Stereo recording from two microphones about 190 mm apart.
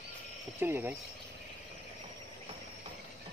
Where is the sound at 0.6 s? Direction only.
10° right (ahead or behind).